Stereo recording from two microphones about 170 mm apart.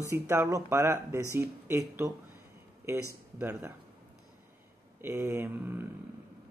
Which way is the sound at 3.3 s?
10° right (ahead or behind).